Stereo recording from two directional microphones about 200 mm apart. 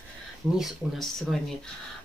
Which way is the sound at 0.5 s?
Centre (ahead or behind).